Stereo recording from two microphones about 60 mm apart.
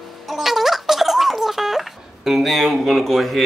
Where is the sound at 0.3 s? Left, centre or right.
Centre.